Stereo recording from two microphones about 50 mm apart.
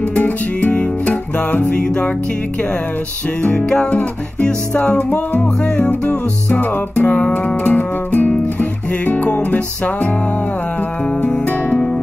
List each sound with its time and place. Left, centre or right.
0.2 s music: left
3.4 s music: left
4.9 s music: left
11.2 s music: left